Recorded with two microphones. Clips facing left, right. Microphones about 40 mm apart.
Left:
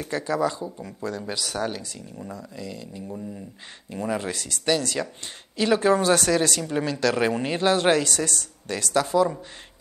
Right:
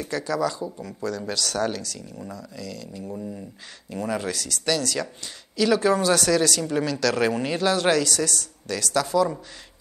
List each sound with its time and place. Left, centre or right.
0.0 s speech: left
1.2 s speech: centre
2.3 s speech: left
3.1 s speech: centre
3.9 s speech: centre
4.3 s speech: left